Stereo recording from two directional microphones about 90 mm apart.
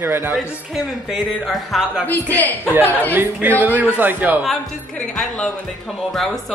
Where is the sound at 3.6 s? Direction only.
20° right (ahead or behind).